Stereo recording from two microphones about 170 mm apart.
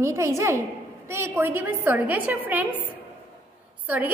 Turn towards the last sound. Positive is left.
turn(degrees=-10)  # may be behind; listen again after turning